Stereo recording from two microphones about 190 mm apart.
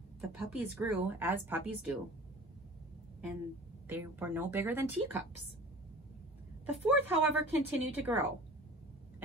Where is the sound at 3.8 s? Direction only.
10° right (ahead or behind).